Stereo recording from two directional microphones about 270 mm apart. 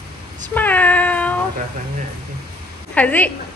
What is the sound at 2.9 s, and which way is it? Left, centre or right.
Speech, centre.